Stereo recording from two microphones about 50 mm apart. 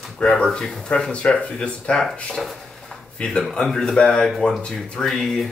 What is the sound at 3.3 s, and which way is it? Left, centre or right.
Speech, centre.